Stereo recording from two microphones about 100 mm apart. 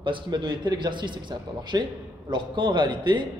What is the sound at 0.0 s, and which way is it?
Speech, 50° right (ahead or behind).